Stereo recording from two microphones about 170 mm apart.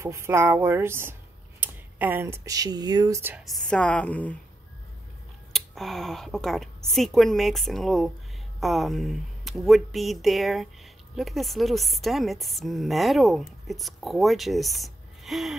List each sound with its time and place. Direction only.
0.0 s speech: 15° right (ahead or behind)
3.4 s a woman's voice: centre (ahead or behind)
5.5 s a woman's voice: centre (ahead or behind)